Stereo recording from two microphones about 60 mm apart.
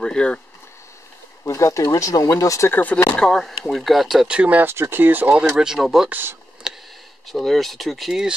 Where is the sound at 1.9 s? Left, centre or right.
Left.